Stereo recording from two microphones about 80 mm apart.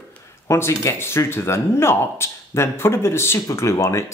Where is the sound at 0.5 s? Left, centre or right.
Left.